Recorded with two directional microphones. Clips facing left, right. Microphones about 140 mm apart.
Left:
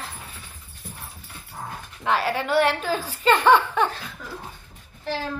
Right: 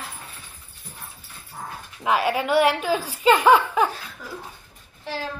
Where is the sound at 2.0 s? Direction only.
10° right (ahead or behind).